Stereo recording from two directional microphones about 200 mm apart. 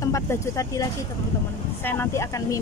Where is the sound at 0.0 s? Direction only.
15° left (ahead or behind).